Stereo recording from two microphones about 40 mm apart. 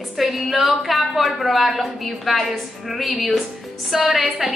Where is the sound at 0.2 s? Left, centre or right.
Centre.